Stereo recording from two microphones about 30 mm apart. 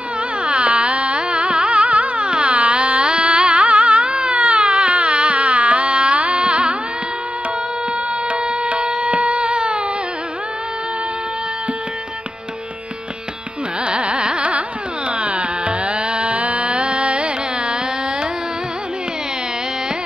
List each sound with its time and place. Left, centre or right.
0.4 s carnatic music: right
4.4 s baby cry: right
4.6 s carnatic music: right
8.3 s music: right
13.8 s carnatic music: right